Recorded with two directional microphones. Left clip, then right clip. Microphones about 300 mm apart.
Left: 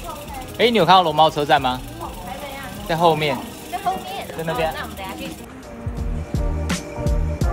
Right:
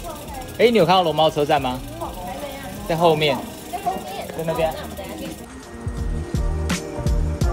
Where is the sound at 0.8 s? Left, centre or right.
Left.